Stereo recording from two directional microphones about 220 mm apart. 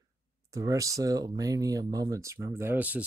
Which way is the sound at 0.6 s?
15° right (ahead or behind).